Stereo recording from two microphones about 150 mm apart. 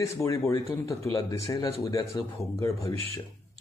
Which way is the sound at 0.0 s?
20° left (ahead or behind).